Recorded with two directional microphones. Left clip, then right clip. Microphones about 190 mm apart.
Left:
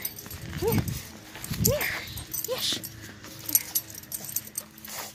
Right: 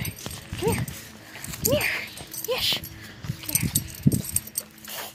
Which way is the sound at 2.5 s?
20° right (ahead or behind).